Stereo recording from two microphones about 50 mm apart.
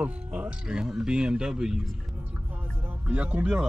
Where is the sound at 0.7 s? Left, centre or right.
Centre.